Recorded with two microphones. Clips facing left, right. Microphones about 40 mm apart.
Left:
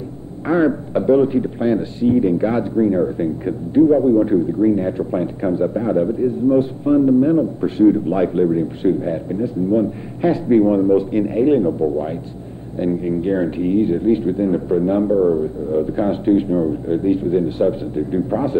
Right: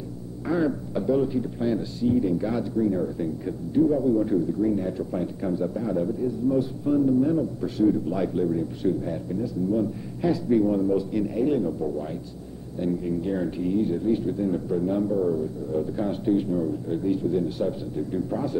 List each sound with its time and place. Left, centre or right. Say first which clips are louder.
0.5 s a man's voice: left 8 dB; left